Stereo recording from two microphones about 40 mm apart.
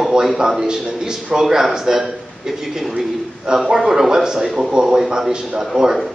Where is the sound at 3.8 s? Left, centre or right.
Centre.